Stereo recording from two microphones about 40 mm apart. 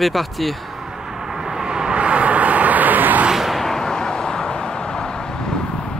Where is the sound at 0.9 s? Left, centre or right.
Centre.